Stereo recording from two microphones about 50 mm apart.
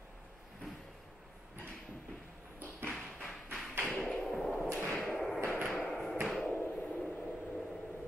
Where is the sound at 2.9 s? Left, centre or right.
Centre.